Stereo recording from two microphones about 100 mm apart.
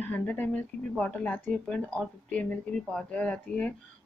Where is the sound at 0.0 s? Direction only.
15° left (ahead or behind).